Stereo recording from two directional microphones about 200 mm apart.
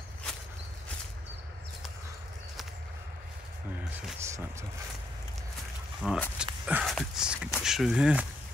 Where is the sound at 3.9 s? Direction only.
10° right (ahead or behind).